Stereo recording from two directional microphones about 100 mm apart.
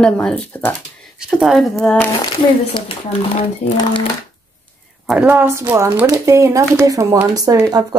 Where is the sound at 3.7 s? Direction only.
60° left (ahead or behind).